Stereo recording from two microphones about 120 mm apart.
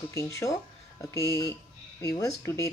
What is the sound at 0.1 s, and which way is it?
Speech, 25° left (ahead or behind).